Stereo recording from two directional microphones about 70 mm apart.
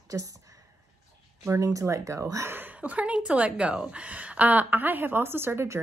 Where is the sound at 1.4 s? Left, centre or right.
Right.